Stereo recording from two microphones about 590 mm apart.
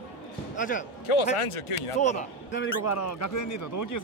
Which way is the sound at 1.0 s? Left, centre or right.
Left.